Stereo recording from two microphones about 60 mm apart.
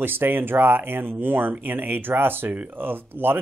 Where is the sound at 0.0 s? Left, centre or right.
Right.